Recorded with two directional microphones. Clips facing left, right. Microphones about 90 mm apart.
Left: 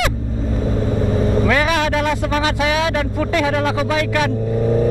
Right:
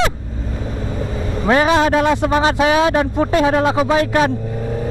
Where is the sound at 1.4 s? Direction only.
30° right (ahead or behind).